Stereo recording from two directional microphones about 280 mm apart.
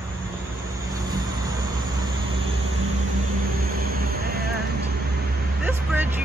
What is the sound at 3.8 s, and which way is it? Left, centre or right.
Vehicle, right.